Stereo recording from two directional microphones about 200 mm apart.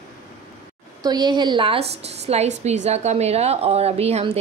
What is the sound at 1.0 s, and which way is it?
A woman's voice, 20° right (ahead or behind).